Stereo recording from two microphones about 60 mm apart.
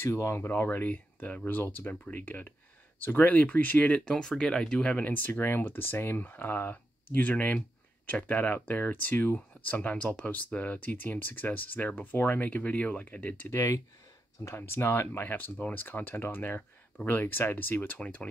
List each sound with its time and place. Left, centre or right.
0.0 s speech: left
0.5 s speech: left; by 5.0 s centre
5.0 s speech: left
13.5 s speech: left